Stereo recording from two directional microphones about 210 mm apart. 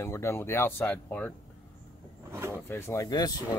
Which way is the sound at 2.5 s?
10° left (ahead or behind).